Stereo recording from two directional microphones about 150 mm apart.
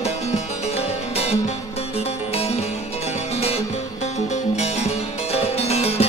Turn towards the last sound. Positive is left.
turn(degrees=45)  # may be behind; listen again after turning